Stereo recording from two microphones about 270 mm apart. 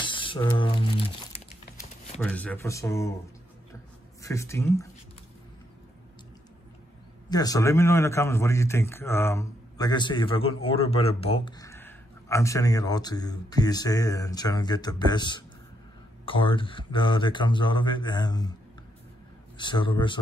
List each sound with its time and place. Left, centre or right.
0.0 s speech: centre
2.2 s a man's voice: centre
4.2 s a man's voice: centre
7.2 s a man's voice: centre
19.5 s a man's voice: centre